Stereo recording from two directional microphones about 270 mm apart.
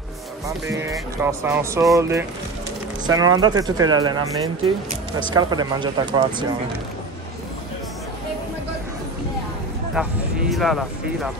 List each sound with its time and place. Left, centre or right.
0.7 s speech: centre
9.9 s speech: centre